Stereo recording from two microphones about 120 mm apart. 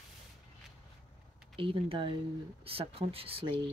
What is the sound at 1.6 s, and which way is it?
Speech, 50° right (ahead or behind).